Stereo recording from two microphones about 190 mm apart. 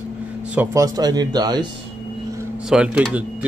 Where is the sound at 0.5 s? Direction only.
15° right (ahead or behind).